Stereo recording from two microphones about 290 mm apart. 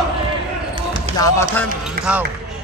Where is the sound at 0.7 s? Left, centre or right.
Centre.